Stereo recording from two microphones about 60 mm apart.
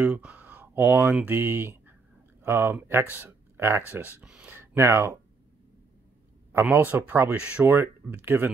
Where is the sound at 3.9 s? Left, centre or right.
Right.